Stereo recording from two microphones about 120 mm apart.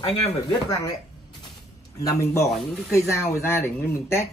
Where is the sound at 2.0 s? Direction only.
25° left (ahead or behind).